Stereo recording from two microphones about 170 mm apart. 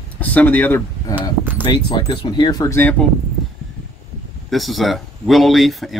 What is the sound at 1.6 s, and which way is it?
Speech, 30° left (ahead or behind).